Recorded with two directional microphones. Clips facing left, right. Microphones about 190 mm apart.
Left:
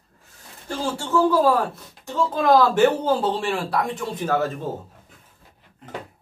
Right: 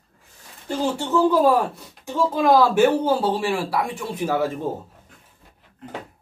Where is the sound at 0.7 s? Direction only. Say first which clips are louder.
Right 2 dB; 20° right (ahead or behind).